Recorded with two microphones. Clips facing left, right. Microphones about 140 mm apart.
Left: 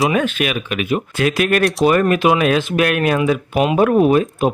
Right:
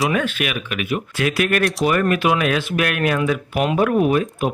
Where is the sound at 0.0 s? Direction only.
25° left (ahead or behind).